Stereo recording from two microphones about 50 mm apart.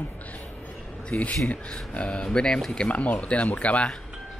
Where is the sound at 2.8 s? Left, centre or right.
Left.